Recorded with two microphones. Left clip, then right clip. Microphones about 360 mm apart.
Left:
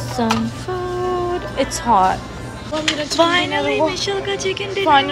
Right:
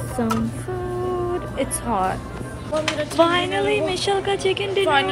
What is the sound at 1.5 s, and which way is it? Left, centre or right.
A woman's voice, centre.